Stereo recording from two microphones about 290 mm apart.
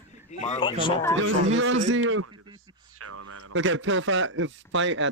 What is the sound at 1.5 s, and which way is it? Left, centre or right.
Speech, right.